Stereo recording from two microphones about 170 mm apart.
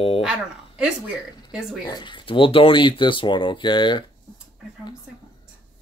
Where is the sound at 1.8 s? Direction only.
25° left (ahead or behind).